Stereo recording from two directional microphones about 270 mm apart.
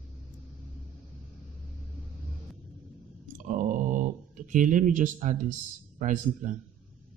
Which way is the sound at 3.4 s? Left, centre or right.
Right.